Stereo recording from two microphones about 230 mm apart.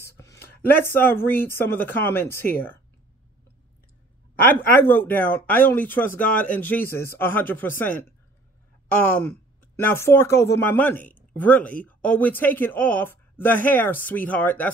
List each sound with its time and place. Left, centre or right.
0.0 s a sound: centre
0.6 s speech: centre
2.4 s speech: left
4.5 s speech: centre
9.8 s speech: centre